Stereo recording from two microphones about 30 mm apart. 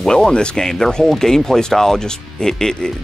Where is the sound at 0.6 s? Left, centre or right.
Centre.